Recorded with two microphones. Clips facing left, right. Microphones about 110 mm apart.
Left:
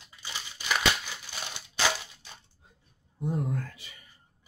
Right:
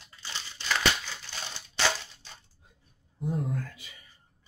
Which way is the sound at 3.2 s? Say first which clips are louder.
Left 1 dB; centre (ahead or behind).